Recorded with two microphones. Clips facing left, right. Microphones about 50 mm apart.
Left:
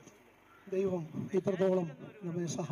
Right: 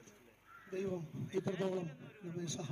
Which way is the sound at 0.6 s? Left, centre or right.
Left.